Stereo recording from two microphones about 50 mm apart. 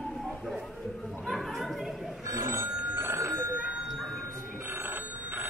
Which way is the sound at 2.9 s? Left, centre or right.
Right.